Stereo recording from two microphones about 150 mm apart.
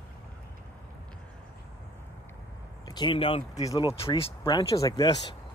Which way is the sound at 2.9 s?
30° left (ahead or behind).